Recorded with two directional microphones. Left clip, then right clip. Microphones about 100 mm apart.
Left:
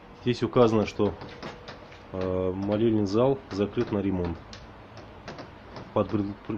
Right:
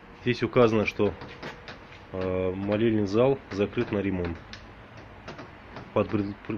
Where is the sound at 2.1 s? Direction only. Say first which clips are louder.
Even; 30° left (ahead or behind).